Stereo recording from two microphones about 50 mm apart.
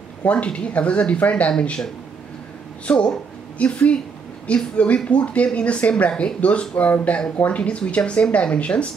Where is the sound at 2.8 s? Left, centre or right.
Centre.